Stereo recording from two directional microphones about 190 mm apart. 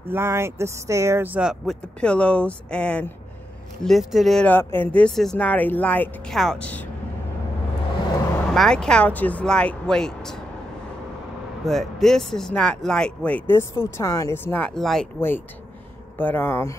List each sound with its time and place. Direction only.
0.1 s speech: 15° right (ahead or behind); by 6.9 s 5° left (ahead or behind)
8.5 s speech: 5° left (ahead or behind)
11.6 s speech: centre (ahead or behind)